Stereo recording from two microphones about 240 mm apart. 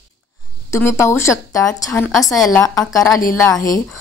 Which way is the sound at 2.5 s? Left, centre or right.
Centre.